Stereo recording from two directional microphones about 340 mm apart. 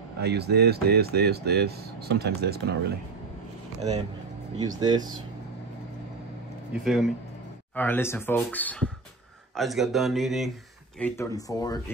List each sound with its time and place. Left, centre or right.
0.2 s speech: right
4.6 s speech: centre
6.7 s speech: centre